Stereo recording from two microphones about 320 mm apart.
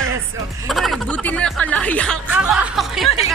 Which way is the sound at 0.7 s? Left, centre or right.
Centre.